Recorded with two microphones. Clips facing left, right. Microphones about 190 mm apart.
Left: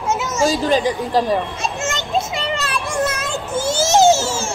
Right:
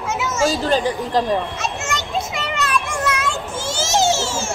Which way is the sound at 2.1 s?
30° left (ahead or behind).